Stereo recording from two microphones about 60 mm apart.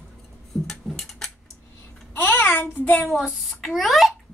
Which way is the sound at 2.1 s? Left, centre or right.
Left.